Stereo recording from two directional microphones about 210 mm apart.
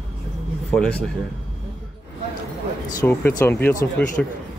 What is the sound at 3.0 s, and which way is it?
Speech, 10° left (ahead or behind).